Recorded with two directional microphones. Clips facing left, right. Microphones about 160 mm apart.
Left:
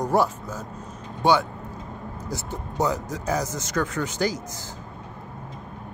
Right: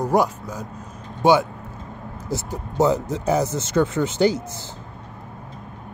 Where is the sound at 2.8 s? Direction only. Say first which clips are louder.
Right 6 dB; 25° right (ahead or behind).